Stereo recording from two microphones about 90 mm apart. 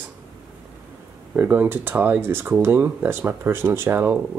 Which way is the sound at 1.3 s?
20° right (ahead or behind).